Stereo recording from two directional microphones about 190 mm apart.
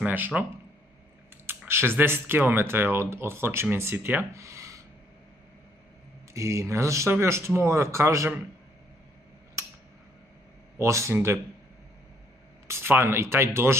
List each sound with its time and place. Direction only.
0.0 s speech: 10° right (ahead or behind)
6.3 s speech: 15° right (ahead or behind)
10.8 s speech: 15° right (ahead or behind)
12.6 s speech: 15° right (ahead or behind)